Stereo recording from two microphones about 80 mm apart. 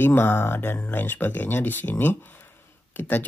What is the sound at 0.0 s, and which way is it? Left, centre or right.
Speech, left.